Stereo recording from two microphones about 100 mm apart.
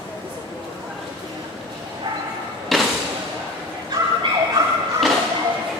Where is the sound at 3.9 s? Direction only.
45° right (ahead or behind).